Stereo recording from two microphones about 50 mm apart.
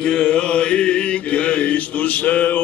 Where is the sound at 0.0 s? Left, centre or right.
Centre.